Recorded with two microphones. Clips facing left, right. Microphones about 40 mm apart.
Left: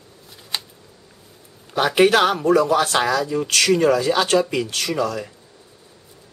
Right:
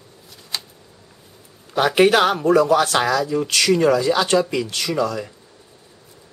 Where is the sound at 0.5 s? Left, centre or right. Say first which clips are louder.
Left 1 dB; centre.